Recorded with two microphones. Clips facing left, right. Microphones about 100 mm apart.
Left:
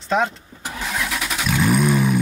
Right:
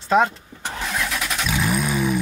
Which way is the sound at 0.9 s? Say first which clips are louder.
Left 1 dB; centre (ahead or behind).